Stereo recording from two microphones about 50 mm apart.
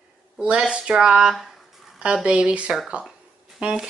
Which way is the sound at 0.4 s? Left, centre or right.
Centre.